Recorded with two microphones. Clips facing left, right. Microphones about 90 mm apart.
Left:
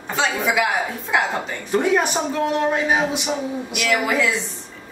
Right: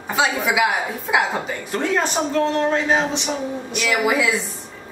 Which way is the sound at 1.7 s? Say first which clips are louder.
Left 3 dB; 15° left (ahead or behind).